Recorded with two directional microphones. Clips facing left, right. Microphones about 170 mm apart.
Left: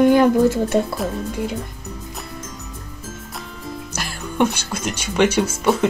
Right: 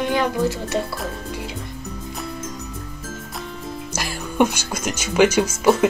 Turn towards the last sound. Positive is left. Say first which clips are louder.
# right 1 dB
turn(degrees=-5)  # may be behind; listen again after turning